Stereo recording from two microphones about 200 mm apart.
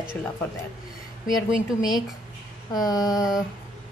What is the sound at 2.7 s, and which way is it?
Mantra, 20° left (ahead or behind).